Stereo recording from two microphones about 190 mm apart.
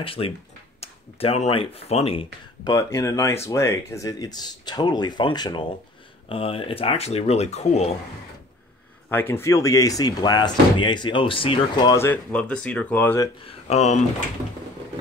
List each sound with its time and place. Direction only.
0.0 s speech: 30° left (ahead or behind)
2.6 s speech: 15° left (ahead or behind); by 7.9 s 35° left (ahead or behind)
9.1 s speech: 10° left (ahead or behind)
13.5 s speech: 35° left (ahead or behind)